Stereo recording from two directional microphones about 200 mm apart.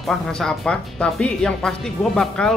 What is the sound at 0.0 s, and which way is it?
Speech, centre (ahead or behind).